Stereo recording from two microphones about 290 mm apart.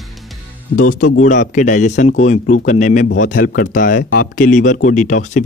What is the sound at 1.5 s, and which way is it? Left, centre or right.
Speech, left.